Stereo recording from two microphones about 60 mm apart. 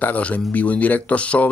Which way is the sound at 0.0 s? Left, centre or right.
Left.